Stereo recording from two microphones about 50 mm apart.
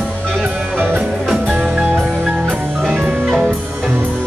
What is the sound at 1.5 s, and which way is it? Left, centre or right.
Music, right.